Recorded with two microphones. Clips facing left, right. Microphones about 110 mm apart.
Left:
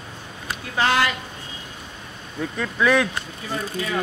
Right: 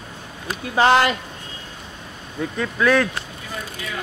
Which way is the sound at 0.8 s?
30° right (ahead or behind).